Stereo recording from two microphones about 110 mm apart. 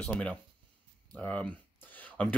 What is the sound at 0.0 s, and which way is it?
Speech, 10° left (ahead or behind).